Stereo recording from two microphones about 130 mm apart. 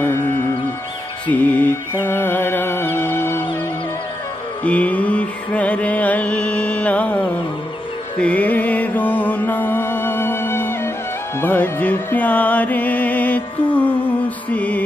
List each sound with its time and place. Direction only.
0.0 s mantra: 15° left (ahead or behind)
1.2 s music: 15° left (ahead or behind)
4.6 s mantra: 10° left (ahead or behind)
8.2 s music: 10° left (ahead or behind)